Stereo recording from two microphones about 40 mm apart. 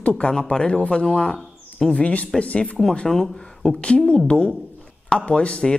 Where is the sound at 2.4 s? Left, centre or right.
Left.